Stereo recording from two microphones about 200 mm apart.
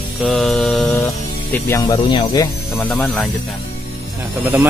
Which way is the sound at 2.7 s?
5° left (ahead or behind).